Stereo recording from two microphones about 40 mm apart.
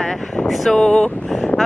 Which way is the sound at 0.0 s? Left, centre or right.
Centre.